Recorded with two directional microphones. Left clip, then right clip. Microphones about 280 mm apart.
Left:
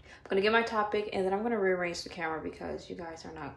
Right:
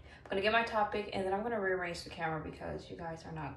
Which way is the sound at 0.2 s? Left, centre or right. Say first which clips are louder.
Left 4 dB; left.